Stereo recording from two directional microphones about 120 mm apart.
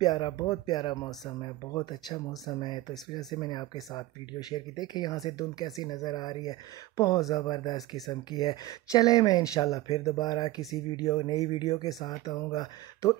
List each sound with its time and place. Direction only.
0.0 s speech: 35° left (ahead or behind)